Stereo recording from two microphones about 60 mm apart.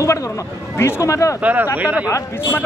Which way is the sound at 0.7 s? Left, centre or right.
Left.